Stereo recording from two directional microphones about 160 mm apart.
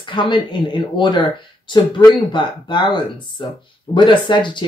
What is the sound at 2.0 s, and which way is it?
Speech, 30° left (ahead or behind).